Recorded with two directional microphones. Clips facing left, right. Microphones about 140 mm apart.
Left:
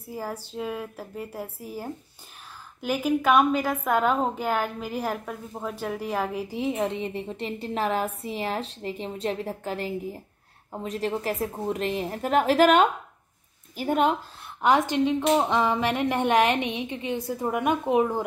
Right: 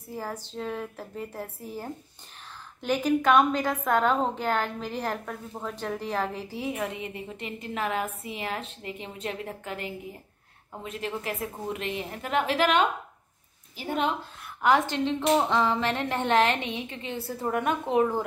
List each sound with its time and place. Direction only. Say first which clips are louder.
0.1 s a woman's voice: left 2 dB; 10° left (ahead or behind); by 14.1 s 45° left (ahead or behind)
14.6 s a woman's voice: left 2 dB; 20° left (ahead or behind)